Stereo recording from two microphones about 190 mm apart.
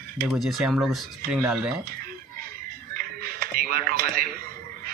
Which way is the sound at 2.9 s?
50° right (ahead or behind).